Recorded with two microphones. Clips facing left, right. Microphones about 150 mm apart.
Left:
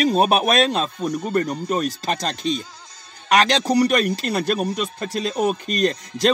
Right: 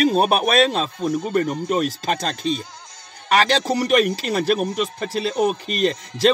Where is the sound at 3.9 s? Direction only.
5° right (ahead or behind).